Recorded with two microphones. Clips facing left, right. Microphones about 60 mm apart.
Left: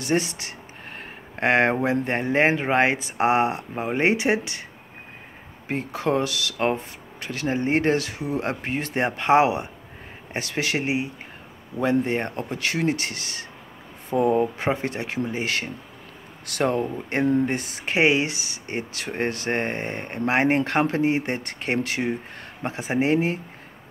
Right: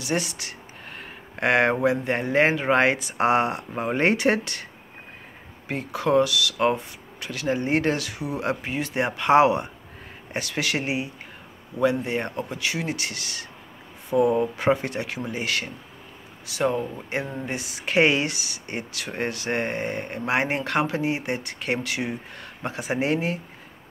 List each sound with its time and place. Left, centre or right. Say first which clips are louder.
0.0 s speech: left 3 dB; left
5.7 s speech: right 1 dB; left
11.8 s speech: left 1 dB; left
16.4 s speech: left 1 dB; left
17.9 s speech: even; left